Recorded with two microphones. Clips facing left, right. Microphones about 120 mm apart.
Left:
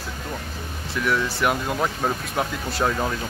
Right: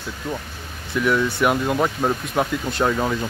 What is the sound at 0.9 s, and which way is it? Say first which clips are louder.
Speech: right 4 dB; centre (ahead or behind).